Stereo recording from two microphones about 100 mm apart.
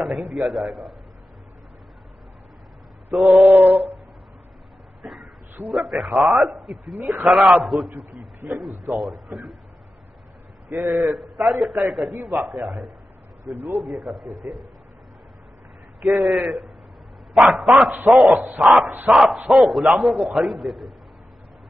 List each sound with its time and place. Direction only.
0.0 s a man's voice: centre (ahead or behind)
3.1 s a man's voice: centre (ahead or behind)
3.4 s a sound: 15° right (ahead or behind)
5.0 s a sound: centre (ahead or behind)
6.1 s a man's voice: centre (ahead or behind)
10.7 s a man's voice: 15° right (ahead or behind)
11.0 s a man's voice: centre (ahead or behind)
16.0 s a man's voice: centre (ahead or behind)